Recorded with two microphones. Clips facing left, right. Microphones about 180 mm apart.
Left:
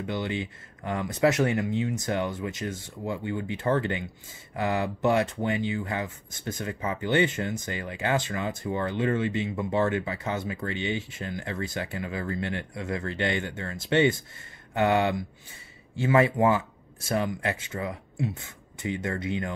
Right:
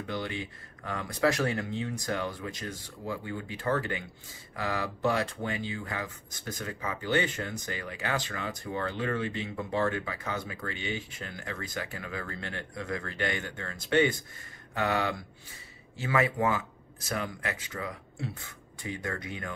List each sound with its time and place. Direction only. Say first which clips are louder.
0.0 s speech: left 4 dB; 20° left (ahead or behind)